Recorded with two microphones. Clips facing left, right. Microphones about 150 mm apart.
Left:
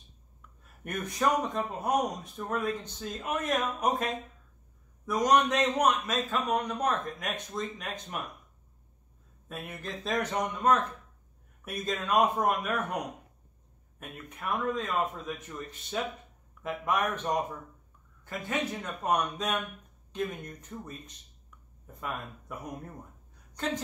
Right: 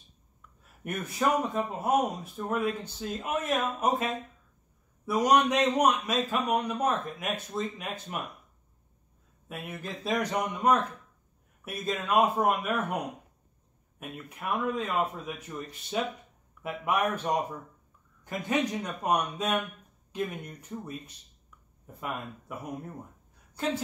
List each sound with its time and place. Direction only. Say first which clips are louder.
0.8 s speech: right 1 dB; 5° right (ahead or behind)
9.5 s speech: right 1 dB; 10° right (ahead or behind)
16.6 s a woman's voice: right 1 dB; 10° right (ahead or behind)